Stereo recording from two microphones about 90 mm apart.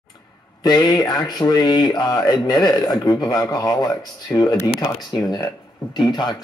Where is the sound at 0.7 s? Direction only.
50° left (ahead or behind).